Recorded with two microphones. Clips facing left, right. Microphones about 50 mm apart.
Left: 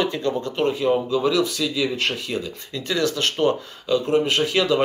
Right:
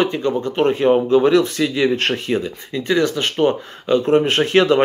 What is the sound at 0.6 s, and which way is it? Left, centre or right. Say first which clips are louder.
Speech: right 6 dB; right.